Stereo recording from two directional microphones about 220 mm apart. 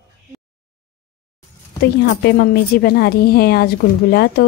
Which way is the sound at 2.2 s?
45° left (ahead or behind).